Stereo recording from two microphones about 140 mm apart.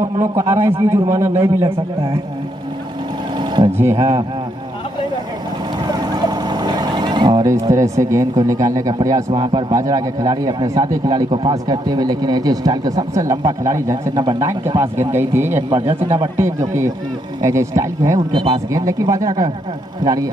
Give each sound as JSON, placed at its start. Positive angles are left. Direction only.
{"t": 0.2, "sound": "speech", "side_deg": -20}
{"t": 3.3, "sound": "vehicle", "side_deg": -35}
{"t": 3.7, "sound": "speech", "side_deg": -20}
{"t": 5.9, "sound": "boat", "side_deg": -30}
{"t": 9.3, "sound": "speech", "side_deg": -35}
{"t": 11.2, "sound": "speech", "side_deg": -40}
{"t": 11.9, "sound": "speech", "side_deg": -30}